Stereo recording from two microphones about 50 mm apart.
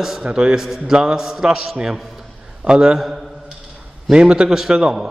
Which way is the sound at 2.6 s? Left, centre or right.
Centre.